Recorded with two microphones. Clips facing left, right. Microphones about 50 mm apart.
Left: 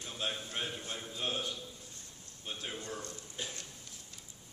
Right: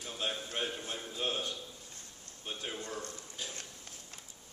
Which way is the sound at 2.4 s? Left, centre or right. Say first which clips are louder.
Right 1 dB; centre.